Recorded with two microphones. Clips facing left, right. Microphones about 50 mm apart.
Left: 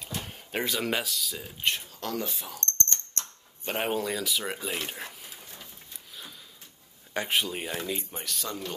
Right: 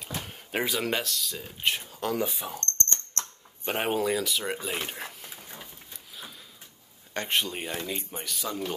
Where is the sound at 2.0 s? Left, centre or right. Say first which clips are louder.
Right 4 dB; centre.